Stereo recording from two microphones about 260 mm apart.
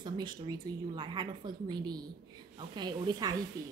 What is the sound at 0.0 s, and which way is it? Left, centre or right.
Speech, centre.